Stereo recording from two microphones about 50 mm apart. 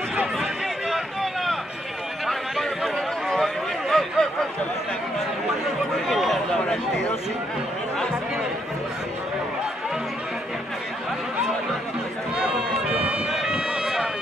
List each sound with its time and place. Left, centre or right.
0.4 s run: centre
2.2 s a sound: centre
6.0 s chatter: centre
12.4 s run: right
13.3 s run: centre